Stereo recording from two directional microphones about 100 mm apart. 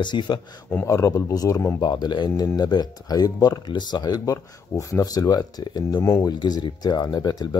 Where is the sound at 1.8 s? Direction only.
50° left (ahead or behind).